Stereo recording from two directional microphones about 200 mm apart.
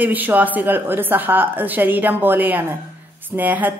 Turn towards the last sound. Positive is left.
turn(degrees=-10)  # may be behind; listen again after turning